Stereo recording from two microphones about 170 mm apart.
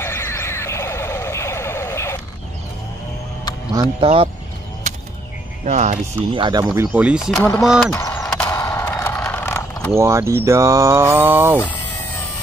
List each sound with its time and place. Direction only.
0.0 s a sound: 15° left (ahead or behind)
4.0 s speech: 35° right (ahead or behind)
4.9 s music: 45° right (ahead or behind)
5.7 s speech: 45° right (ahead or behind)
6.3 s speech: 25° right (ahead or behind)
6.9 s speech: 5° right (ahead or behind)
8.2 s a sound: 5° left (ahead or behind)
8.5 s a sound: 20° left (ahead or behind)
9.9 s speech: 15° right (ahead or behind)